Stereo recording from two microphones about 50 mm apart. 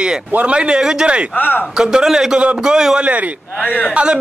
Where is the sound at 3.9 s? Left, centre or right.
Centre.